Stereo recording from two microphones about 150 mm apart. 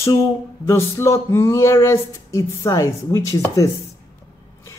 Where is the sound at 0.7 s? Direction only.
20° left (ahead or behind).